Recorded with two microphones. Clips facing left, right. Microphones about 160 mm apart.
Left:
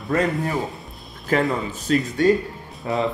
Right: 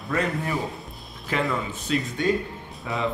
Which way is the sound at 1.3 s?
45° left (ahead or behind).